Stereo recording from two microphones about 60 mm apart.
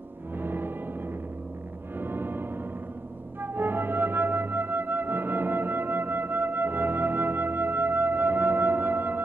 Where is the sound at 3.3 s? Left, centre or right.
Right.